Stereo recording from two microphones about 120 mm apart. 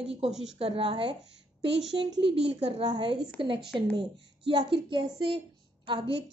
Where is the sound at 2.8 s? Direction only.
35° right (ahead or behind).